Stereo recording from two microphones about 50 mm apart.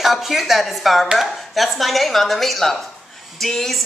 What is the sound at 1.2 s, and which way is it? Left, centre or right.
A woman's voice, centre.